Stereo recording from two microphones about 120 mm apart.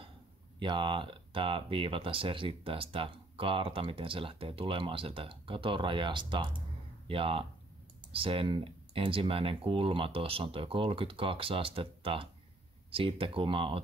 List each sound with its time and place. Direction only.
0.6 s speech: 40° right (ahead or behind)